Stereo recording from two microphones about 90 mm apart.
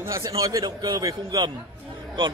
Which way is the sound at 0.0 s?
40° right (ahead or behind).